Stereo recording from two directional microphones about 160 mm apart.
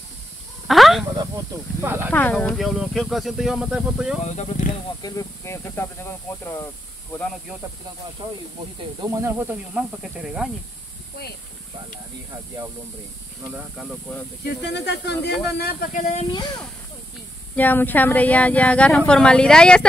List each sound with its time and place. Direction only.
0.7 s snake: centre (ahead or behind)
1.1 s speech: 20° right (ahead or behind)
2.1 s speech: 10° left (ahead or behind); by 4.2 s 5° right (ahead or behind)
4.2 s speech: 45° left (ahead or behind)
5.0 s a woman's voice: 20° left (ahead or behind)
9.0 s speech: 15° right (ahead or behind)
13.5 s speech: 10° right (ahead or behind)
14.4 s speech: 90° left; by 16.1 s 60° left (ahead or behind)
16.1 s speech: 40° left (ahead or behind)
17.6 s a woman's voice: 10° left (ahead or behind)